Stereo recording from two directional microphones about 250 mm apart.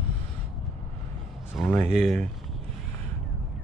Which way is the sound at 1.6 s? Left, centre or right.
Centre.